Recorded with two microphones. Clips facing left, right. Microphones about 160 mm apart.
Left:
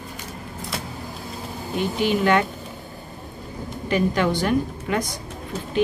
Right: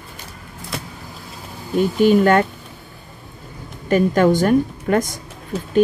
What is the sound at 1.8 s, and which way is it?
Speech, 45° right (ahead or behind).